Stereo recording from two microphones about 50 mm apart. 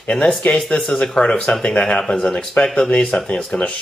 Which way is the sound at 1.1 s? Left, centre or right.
Centre.